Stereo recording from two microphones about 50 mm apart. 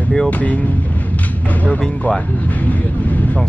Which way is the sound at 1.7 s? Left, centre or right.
Left.